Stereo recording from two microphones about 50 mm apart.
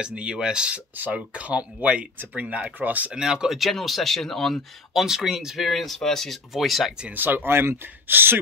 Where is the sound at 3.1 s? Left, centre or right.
Centre.